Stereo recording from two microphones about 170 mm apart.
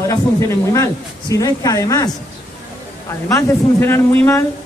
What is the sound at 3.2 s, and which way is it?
A man's voice, 15° left (ahead or behind).